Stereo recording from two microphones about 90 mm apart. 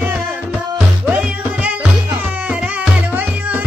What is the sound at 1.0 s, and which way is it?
Music, 15° right (ahead or behind).